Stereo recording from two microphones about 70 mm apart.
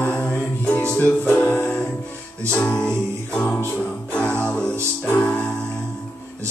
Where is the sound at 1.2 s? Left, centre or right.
Left.